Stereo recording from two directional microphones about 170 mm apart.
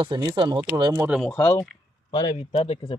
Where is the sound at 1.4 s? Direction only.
20° left (ahead or behind).